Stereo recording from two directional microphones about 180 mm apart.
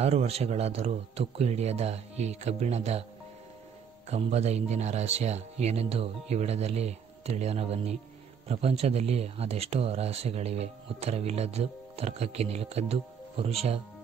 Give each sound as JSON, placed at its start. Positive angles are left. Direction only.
{"t": 0.0, "sound": "speech", "side_deg": -35}
{"t": 4.1, "sound": "speech", "side_deg": -35}